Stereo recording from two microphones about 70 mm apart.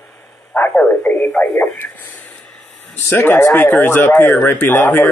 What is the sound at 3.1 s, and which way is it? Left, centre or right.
Speech, left.